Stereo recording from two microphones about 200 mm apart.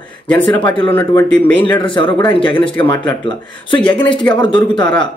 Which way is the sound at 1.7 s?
25° left (ahead or behind).